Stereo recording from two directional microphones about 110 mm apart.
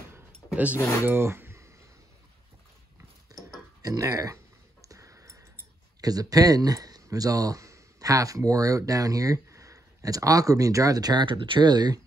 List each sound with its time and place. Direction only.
1.0 s speech: 20° right (ahead or behind)
3.8 s speech: 35° right (ahead or behind)
4.8 s tick-tock: 30° right (ahead or behind)
5.9 s speech: 35° right (ahead or behind)